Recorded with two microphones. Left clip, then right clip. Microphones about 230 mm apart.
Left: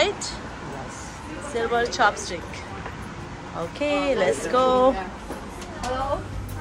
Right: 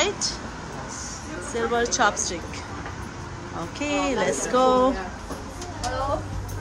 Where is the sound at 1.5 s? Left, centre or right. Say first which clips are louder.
Even; centre.